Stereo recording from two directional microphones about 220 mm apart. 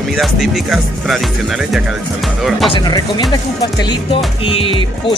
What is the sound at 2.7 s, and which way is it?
Speech, 20° left (ahead or behind).